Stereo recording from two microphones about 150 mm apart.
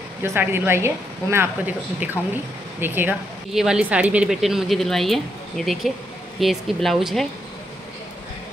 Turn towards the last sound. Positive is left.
turn(degrees=0)  # may be behind; listen again after turning